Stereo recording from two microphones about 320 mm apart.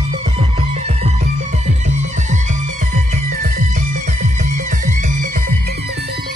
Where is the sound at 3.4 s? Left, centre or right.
Right.